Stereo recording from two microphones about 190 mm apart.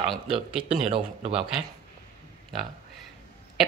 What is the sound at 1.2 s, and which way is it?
Speech, 30° right (ahead or behind).